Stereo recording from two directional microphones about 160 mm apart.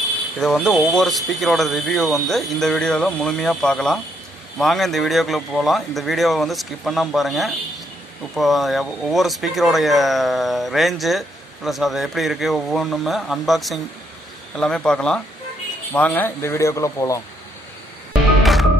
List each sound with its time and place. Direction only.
0.4 s speech: centre (ahead or behind); by 17.2 s 20° left (ahead or behind)
18.4 s music: centre (ahead or behind)